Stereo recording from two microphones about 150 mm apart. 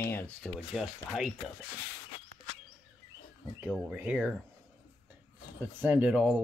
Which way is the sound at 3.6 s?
5° right (ahead or behind).